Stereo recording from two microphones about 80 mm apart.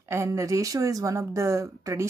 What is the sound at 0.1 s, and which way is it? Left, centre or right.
Speech, right.